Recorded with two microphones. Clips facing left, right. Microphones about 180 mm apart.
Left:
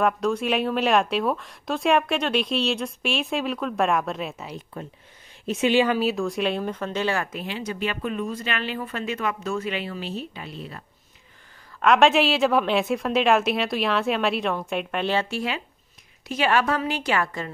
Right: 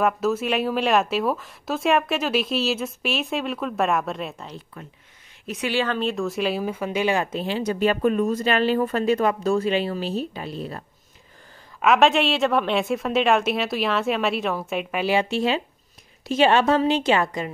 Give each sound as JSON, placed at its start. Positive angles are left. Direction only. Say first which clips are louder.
{"t": 0.0, "sound": "speech", "louder": "right 1 dB", "side_deg": -5}
{"t": 4.7, "sound": "speech", "louder": "left 5 dB", "side_deg": 30}
{"t": 11.8, "sound": "speech", "louder": "even", "side_deg": 0}
{"t": 15.2, "sound": "a woman's voice", "louder": "right 6 dB", "side_deg": -25}